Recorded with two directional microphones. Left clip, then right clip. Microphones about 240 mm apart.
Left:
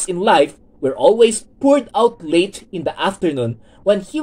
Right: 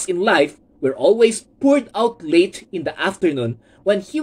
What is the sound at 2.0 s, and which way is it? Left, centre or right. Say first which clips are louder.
Speech: left 1 dB; left.